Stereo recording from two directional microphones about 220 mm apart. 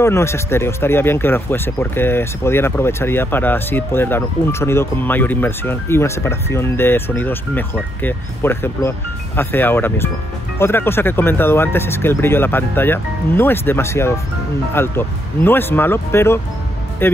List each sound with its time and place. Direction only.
0.0 s speech: 10° left (ahead or behind)